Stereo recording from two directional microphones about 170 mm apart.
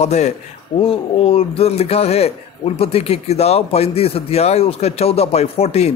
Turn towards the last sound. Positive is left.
turn(degrees=40)  # may be behind; listen again after turning